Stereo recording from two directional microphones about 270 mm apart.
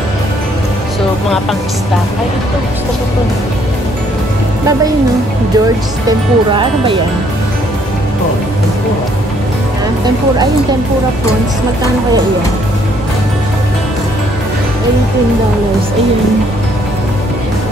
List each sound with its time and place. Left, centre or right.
6.0 s speech: centre